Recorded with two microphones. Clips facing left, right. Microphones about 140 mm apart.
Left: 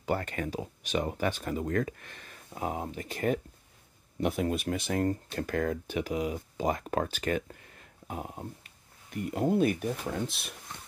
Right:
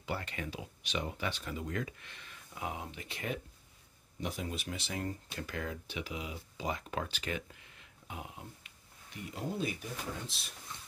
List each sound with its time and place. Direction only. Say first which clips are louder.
0.0 s speech: left 8 dB; 45° left (ahead or behind)
4.2 s speech: left 10 dB; 60° left (ahead or behind)